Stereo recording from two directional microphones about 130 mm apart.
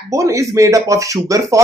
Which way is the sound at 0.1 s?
25° right (ahead or behind).